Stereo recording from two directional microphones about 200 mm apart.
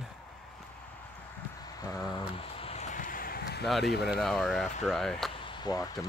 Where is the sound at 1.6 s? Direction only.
15° left (ahead or behind).